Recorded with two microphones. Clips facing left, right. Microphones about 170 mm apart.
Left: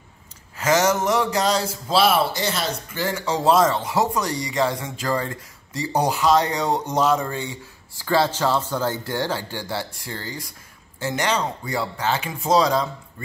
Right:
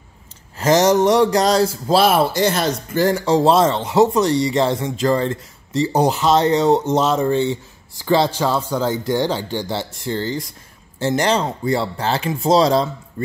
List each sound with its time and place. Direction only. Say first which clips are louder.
0.6 s speech: right 6 dB; 35° right (ahead or behind)